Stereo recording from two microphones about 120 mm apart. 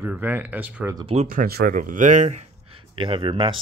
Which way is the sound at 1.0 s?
65° right (ahead or behind).